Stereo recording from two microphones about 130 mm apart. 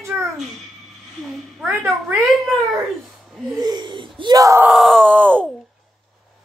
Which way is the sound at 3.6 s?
30° right (ahead or behind).